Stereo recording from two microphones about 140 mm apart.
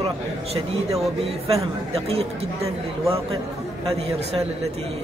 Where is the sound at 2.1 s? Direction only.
45° right (ahead or behind).